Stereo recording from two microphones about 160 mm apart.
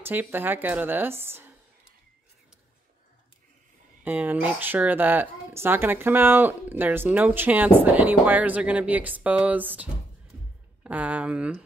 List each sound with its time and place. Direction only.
0.0 s speech: 10° right (ahead or behind)
4.0 s speech: 10° right (ahead or behind)